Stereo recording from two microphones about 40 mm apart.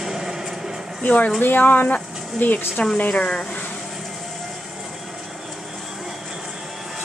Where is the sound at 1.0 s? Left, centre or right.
Left.